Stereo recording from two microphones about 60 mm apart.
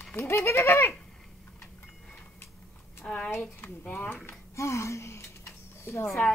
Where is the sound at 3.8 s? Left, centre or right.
Left.